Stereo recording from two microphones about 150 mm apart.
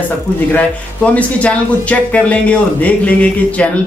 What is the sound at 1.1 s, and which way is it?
Speech, 10° left (ahead or behind).